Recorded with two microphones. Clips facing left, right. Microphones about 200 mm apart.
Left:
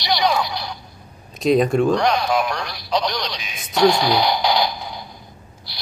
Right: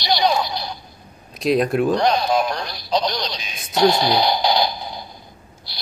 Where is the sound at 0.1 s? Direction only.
30° right (ahead or behind).